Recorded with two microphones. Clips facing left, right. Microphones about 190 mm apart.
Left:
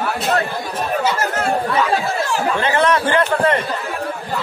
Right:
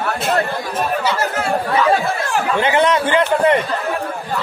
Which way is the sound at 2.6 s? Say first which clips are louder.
Right 2 dB; 15° right (ahead or behind).